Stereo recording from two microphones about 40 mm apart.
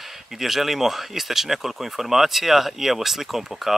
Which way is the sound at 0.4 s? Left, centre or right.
Centre.